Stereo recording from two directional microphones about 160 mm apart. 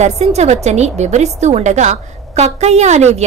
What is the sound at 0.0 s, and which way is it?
A woman's voice, 45° right (ahead or behind).